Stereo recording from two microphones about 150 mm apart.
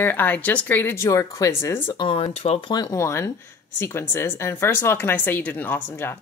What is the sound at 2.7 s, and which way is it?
A woman's voice, 25° left (ahead or behind).